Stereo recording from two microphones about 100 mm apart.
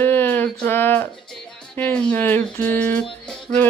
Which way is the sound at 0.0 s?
20° left (ahead or behind).